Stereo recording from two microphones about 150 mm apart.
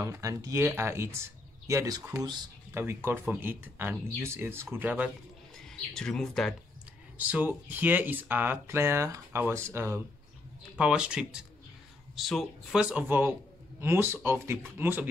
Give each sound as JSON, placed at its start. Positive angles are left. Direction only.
{"t": 0.0, "sound": "speech", "side_deg": -20}
{"t": 5.6, "sound": "speech", "side_deg": 5}
{"t": 7.2, "sound": "speech", "side_deg": -10}
{"t": 10.8, "sound": "speech", "side_deg": -5}